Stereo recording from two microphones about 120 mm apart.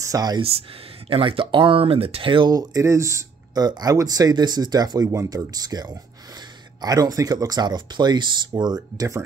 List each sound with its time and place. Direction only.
0.0 s speech: 30° right (ahead or behind)
0.4 s speech: 55° right (ahead or behind); by 9.2 s 30° right (ahead or behind)